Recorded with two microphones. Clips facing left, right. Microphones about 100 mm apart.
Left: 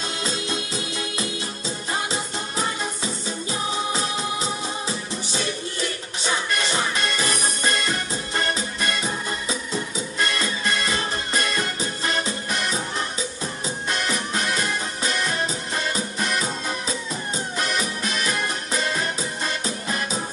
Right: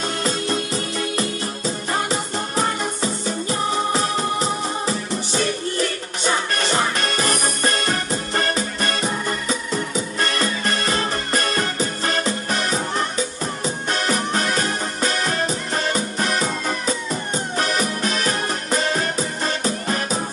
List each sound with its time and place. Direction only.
0.0 s music: 45° right (ahead or behind)